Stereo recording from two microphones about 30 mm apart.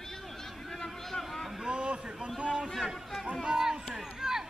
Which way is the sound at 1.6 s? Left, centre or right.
Right.